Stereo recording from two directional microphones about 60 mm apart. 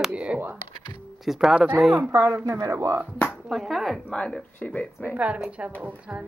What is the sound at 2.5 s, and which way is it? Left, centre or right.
Speech, right.